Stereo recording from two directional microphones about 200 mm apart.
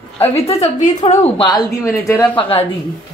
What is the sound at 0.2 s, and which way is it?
A woman's voice, 30° left (ahead or behind).